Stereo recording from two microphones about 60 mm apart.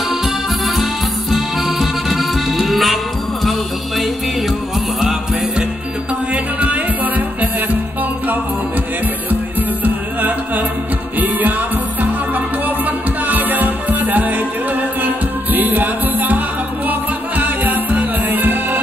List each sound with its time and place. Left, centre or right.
0.1 s accordion: centre
3.4 s music: centre
6.3 s music: right
11.1 s music: right